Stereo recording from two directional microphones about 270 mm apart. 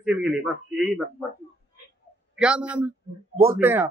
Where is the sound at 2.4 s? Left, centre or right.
Centre.